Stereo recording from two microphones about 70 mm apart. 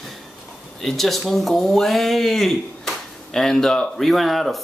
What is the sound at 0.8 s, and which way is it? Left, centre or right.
Speech, centre.